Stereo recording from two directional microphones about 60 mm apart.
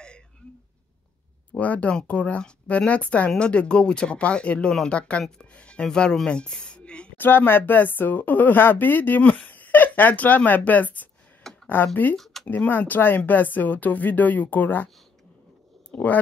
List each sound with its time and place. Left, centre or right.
1.5 s speech: left
7.2 s speech: left
15.9 s speech: left